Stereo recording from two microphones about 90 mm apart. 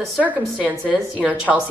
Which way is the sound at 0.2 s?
20° right (ahead or behind).